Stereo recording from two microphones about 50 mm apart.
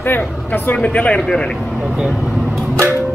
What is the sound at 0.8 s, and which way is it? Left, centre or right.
Speech, left.